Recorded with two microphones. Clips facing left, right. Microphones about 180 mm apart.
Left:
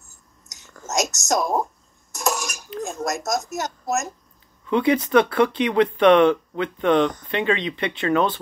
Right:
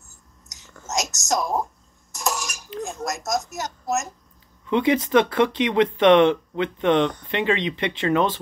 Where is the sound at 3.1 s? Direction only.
50° left (ahead or behind).